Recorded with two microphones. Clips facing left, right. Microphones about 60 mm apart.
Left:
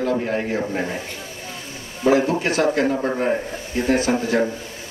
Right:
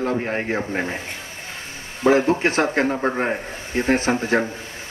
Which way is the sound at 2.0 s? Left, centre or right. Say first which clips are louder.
Right 1 dB; right.